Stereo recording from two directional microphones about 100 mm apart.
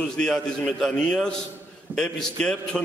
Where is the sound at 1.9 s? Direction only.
15° right (ahead or behind).